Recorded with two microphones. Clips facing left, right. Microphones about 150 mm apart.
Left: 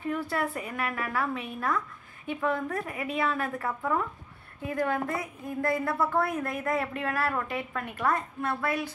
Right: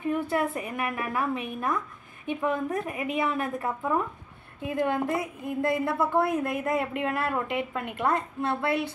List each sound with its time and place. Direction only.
0.0 s a woman's voice: 20° right (ahead or behind)